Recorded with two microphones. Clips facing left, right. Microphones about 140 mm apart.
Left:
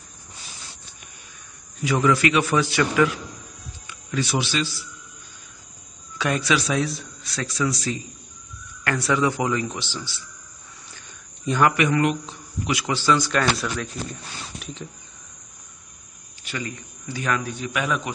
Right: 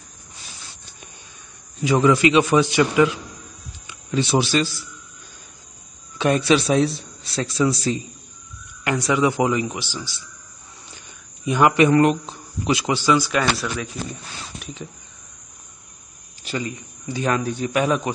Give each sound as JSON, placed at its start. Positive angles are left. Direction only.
{"t": 1.8, "sound": "a man's voice", "side_deg": -25}
{"t": 4.1, "sound": "speech", "side_deg": -25}
{"t": 4.4, "sound": "a man's voice", "side_deg": -40}
{"t": 6.1, "sound": "a man's voice", "side_deg": -25}
{"t": 8.8, "sound": "speech", "side_deg": -15}
{"t": 11.4, "sound": "speech", "side_deg": -15}
{"t": 11.7, "sound": "a man's voice", "side_deg": -35}
{"t": 12.9, "sound": "speech", "side_deg": -10}
{"t": 16.4, "sound": "a man's voice", "side_deg": -25}